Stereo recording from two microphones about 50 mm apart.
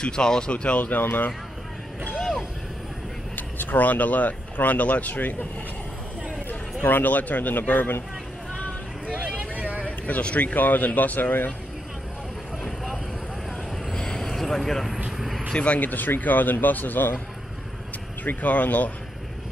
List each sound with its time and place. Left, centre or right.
0.0 s speech: centre; by 1.3 s left
2.0 s vehicle: centre
3.3 s speech: left
6.8 s speech: left
9.1 s vehicle: right
9.8 s speech: left
13.9 s vehicle: centre
15.5 s speech: left
18.2 s speech: left